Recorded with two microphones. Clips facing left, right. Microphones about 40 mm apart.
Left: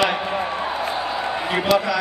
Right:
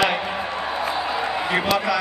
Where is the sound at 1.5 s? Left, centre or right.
Centre.